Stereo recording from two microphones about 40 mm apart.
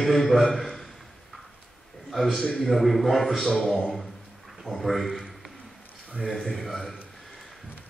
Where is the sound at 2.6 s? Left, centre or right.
Centre.